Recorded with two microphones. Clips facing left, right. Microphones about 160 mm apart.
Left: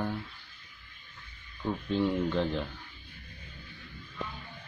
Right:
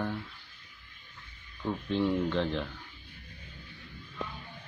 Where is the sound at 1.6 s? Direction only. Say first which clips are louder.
Even; 5° left (ahead or behind).